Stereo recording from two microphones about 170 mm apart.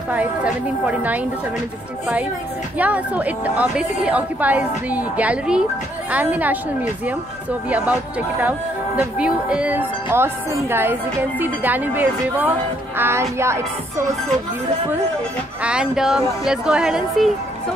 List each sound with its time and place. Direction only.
0.1 s speech: 10° right (ahead or behind)
2.8 s speech: 10° right (ahead or behind)
7.7 s speech: 10° right (ahead or behind)
15.6 s speech: 5° right (ahead or behind)